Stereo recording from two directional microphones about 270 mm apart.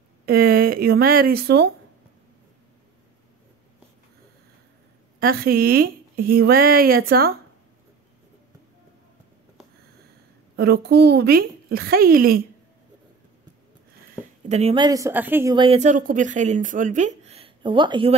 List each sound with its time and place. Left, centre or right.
0.2 s speech: right
5.2 s speech: right
10.5 s speech: right
14.5 s a woman's voice: right